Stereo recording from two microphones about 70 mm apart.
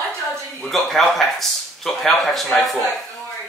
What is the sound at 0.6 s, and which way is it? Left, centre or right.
Speech, centre.